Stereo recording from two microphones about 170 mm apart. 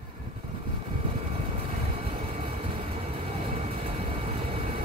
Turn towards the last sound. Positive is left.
turn(degrees=-35)  # may be behind; listen again after turning